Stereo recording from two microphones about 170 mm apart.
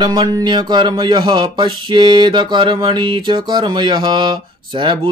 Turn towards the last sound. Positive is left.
turn(degrees=-30)  # may be behind; listen again after turning